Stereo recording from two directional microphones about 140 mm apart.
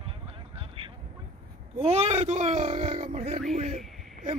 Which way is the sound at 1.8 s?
50° right (ahead or behind).